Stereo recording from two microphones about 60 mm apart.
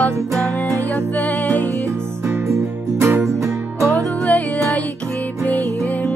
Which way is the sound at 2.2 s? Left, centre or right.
Right.